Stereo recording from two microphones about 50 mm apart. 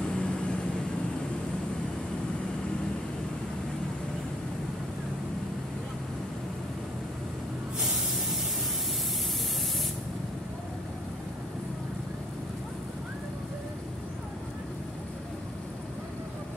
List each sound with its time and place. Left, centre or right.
0.1 s vehicle: left
7.8 s spray: centre